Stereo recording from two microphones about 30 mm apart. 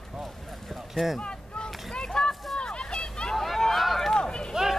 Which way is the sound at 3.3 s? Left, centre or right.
Centre.